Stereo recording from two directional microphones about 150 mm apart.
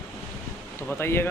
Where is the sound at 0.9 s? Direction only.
15° left (ahead or behind).